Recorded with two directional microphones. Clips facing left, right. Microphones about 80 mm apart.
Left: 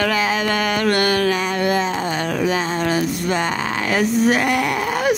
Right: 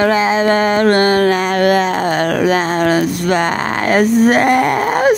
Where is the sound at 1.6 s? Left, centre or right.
Right.